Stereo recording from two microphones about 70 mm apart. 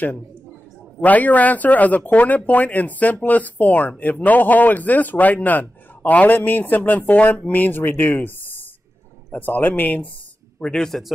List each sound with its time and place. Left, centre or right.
1.0 s speech: left
10.6 s a man's voice: centre